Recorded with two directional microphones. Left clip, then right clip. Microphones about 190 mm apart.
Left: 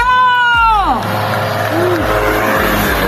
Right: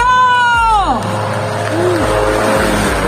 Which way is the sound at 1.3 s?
35° right (ahead or behind).